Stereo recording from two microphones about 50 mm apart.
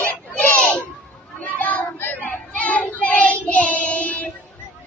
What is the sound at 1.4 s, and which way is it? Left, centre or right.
Children playing, left.